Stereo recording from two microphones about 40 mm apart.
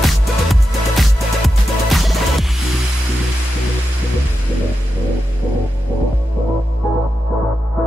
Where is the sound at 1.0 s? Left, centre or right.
Centre.